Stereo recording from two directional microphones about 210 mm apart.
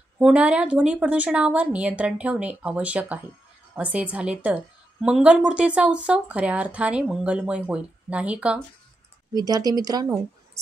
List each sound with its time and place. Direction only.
0.2 s a woman's voice: 5° right (ahead or behind)
9.3 s a woman's voice: 20° right (ahead or behind)